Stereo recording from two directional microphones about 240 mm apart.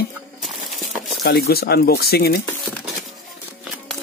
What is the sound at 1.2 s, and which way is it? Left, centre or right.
Speech, left.